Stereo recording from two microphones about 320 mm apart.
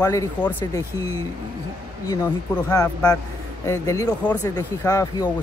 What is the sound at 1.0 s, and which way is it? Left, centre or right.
Speech, right.